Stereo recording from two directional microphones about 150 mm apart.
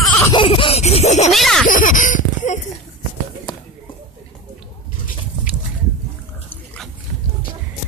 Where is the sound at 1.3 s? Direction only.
Centre (ahead or behind).